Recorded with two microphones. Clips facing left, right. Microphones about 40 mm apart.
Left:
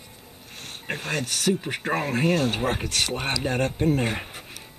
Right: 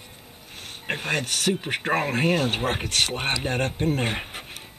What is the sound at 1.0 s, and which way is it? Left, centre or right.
Speech, right.